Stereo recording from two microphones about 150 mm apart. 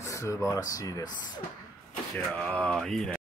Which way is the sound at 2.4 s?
5° left (ahead or behind).